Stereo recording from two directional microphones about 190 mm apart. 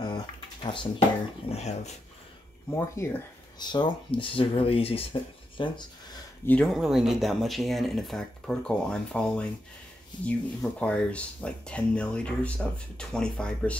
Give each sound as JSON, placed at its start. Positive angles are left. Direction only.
{"t": 0.0, "sound": "a sound", "side_deg": 25}
{"t": 1.5, "sound": "speech", "side_deg": 35}
{"t": 2.7, "sound": "speech", "side_deg": 15}
{"t": 6.4, "sound": "speech", "side_deg": 5}